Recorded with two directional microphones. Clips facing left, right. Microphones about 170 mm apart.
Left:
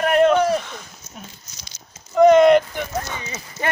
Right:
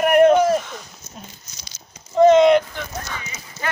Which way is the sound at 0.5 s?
5° right (ahead or behind).